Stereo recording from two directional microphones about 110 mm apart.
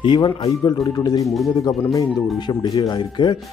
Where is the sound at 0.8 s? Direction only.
35° left (ahead or behind).